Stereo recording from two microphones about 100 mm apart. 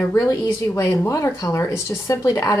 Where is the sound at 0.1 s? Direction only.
30° left (ahead or behind).